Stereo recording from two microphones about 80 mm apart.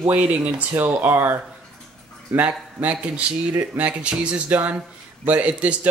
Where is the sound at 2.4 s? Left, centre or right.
Centre.